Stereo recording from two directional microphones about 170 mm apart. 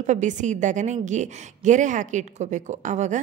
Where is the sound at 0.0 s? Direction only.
45° right (ahead or behind).